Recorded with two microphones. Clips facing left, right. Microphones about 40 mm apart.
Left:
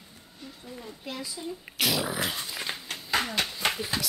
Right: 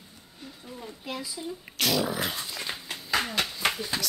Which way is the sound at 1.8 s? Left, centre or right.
Centre.